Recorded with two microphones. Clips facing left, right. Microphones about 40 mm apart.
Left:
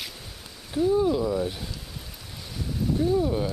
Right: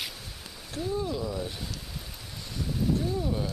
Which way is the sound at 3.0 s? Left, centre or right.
Left.